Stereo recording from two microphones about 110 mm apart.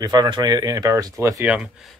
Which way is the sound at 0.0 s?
40° right (ahead or behind).